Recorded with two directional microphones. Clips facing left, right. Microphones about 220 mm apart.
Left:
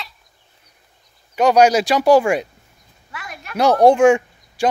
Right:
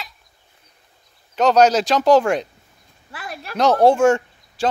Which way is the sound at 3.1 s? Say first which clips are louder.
Right 2 dB; 35° right (ahead or behind).